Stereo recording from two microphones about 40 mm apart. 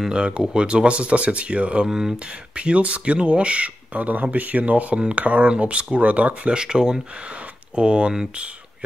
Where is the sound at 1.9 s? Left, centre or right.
Centre.